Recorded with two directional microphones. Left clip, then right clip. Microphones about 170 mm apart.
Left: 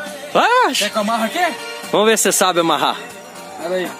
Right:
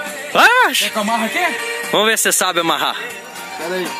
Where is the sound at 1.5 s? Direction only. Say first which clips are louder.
Right 6 dB; 80° left.